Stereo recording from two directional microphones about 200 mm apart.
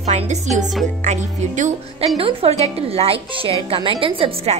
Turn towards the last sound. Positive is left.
turn(degrees=-25)  # may be behind; listen again after turning